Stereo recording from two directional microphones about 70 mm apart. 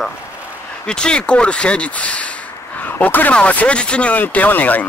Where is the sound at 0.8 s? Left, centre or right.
Centre.